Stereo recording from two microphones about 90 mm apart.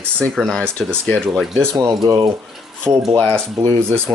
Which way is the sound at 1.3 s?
Centre (ahead or behind).